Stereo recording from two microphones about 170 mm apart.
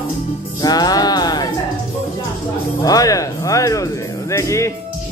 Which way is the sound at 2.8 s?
20° left (ahead or behind).